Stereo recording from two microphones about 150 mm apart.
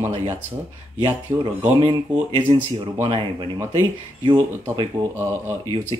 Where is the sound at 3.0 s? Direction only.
30° right (ahead or behind).